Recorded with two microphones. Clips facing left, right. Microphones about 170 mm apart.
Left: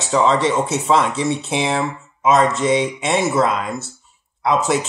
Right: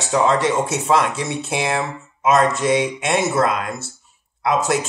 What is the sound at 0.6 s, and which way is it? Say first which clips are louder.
Speech: left 1 dB; 15° right (ahead or behind).